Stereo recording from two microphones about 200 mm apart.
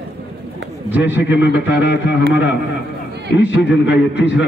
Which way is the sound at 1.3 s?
60° left (ahead or behind).